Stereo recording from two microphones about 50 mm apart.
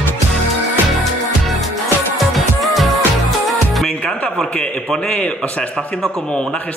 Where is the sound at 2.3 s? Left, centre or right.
Centre.